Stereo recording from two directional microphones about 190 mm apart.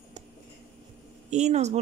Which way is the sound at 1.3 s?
35° right (ahead or behind).